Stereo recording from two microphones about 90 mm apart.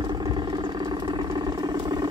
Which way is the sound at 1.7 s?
50° right (ahead or behind).